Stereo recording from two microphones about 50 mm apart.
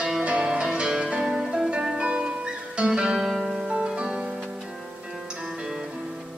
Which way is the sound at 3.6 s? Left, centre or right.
Centre.